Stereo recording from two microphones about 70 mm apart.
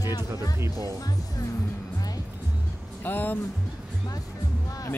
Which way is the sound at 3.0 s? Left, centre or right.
Left.